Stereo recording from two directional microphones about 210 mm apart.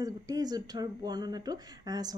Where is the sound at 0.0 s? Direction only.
20° right (ahead or behind).